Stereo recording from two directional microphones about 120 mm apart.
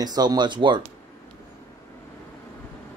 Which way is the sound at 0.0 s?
35° right (ahead or behind).